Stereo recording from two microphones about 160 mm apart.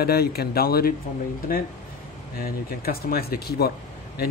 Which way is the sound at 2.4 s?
70° left (ahead or behind).